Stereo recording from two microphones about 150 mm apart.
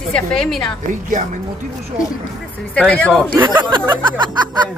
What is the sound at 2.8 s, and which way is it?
Speech, 10° left (ahead or behind).